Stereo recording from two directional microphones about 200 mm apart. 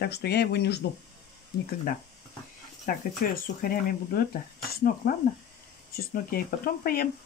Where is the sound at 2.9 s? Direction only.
45° left (ahead or behind).